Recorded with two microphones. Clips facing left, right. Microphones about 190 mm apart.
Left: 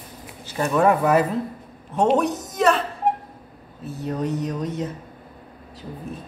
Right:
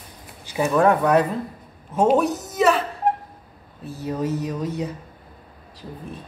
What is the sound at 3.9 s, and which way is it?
Speech, centre (ahead or behind).